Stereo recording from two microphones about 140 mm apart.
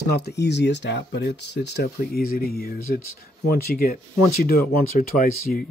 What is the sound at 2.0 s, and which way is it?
Speech, 90° left.